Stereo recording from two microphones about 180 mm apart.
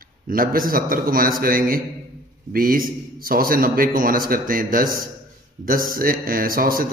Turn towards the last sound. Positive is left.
turn(degrees=-55)  # may be behind; listen again after turning